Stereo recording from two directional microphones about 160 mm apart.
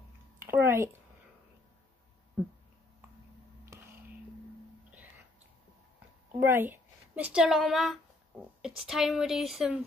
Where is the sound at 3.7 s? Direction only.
15° right (ahead or behind).